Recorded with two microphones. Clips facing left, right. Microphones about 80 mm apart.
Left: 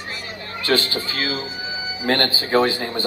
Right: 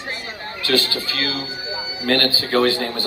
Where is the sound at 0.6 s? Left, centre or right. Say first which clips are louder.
Even; left; by 3.0 s centre.